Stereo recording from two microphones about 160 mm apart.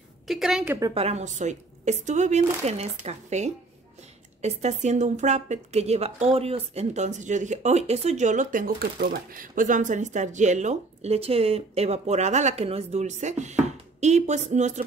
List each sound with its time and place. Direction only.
0.3 s a woman's voice: 5° right (ahead or behind)
0.7 s a woman's voice: 20° right (ahead or behind)
0.9 s speech: 40° right (ahead or behind)